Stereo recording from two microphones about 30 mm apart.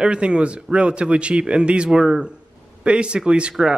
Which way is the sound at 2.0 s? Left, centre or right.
Centre.